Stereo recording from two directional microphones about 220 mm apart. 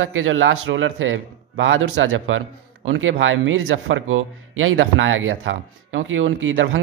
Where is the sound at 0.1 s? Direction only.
65° right (ahead or behind).